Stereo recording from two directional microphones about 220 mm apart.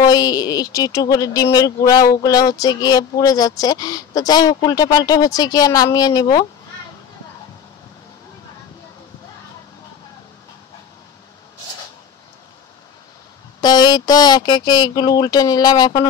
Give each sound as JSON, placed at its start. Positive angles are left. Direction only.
{"t": 0.0, "sound": "speech", "side_deg": 15}
{"t": 13.6, "sound": "speech", "side_deg": 20}